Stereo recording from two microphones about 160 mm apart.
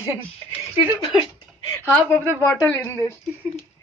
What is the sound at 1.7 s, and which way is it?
A woman's voice, 15° left (ahead or behind).